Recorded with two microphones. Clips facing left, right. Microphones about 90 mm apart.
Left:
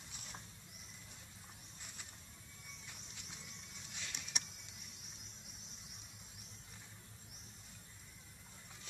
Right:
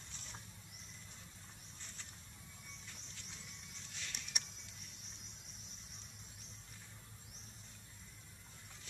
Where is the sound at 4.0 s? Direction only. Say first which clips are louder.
Even; 15° left (ahead or behind).